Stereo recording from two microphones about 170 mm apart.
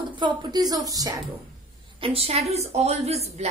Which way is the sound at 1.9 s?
35° right (ahead or behind).